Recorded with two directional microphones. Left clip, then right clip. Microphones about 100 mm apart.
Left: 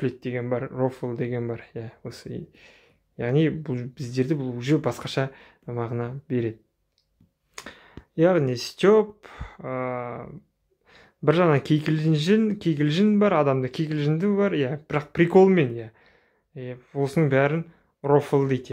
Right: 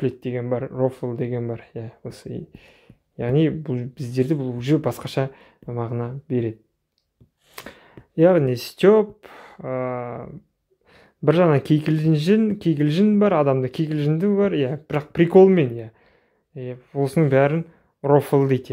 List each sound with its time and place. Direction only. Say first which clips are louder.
0.0 s speech: right 3 dB; 25° right (ahead or behind)
7.5 s speech: right 2 dB; 35° right (ahead or behind); by 18.7 s 50° right (ahead or behind)